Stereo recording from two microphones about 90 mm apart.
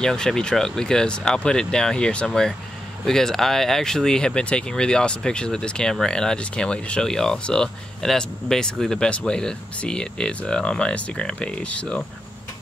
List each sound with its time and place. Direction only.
0.0 s speech: 5° left (ahead or behind)